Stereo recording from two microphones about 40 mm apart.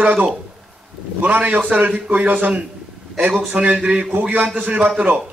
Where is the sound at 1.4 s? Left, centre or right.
Right.